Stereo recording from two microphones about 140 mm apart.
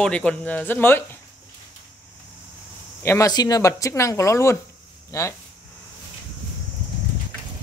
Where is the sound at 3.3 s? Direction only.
30° left (ahead or behind).